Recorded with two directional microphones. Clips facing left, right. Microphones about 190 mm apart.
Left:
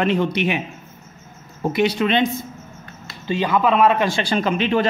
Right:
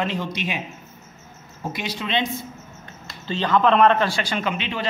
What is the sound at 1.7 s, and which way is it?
Speech, 60° left (ahead or behind).